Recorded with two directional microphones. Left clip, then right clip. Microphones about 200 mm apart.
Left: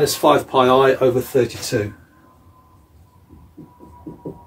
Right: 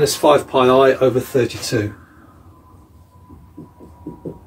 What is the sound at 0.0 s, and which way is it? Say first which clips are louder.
Speech: right 2 dB; 25° left (ahead or behind).